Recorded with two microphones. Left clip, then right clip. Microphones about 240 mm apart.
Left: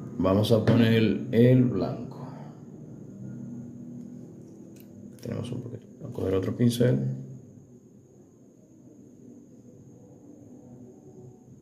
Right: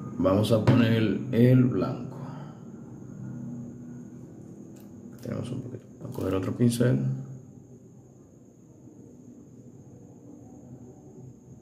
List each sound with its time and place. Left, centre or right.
0.2 s speech: centre
5.2 s speech: centre